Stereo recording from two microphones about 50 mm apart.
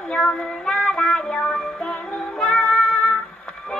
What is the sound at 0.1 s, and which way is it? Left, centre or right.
Music, centre.